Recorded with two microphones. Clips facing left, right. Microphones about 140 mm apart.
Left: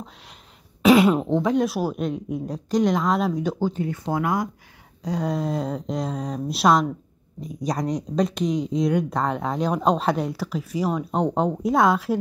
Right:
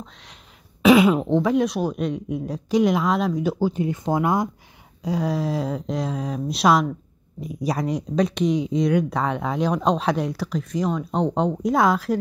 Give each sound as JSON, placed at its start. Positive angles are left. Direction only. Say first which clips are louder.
{"t": 0.0, "sound": "speech", "louder": "left 1 dB", "side_deg": 5}
{"t": 3.8, "sound": "speech", "louder": "right 3 dB", "side_deg": -20}
{"t": 5.0, "sound": "speech", "louder": "right 1 dB", "side_deg": -5}